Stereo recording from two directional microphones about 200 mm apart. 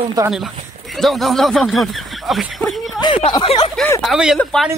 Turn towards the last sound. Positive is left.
turn(degrees=0)  # may be behind; listen again after turning